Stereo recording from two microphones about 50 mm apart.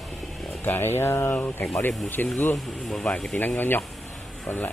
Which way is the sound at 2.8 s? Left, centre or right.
Centre.